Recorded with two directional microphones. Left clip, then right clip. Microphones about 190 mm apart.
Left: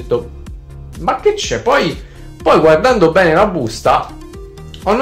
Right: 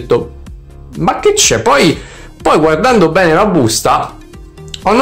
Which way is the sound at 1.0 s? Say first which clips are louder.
Right 4 dB; 40° right (ahead or behind).